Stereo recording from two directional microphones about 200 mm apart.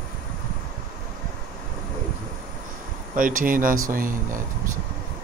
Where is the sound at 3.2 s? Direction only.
45° right (ahead or behind).